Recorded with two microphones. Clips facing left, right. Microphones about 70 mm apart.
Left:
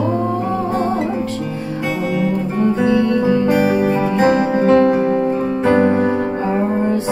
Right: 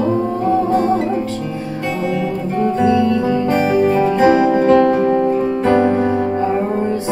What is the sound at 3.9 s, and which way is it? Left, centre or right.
Music, centre.